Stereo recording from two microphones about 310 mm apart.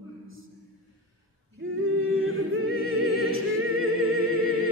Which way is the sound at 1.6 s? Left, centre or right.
Right.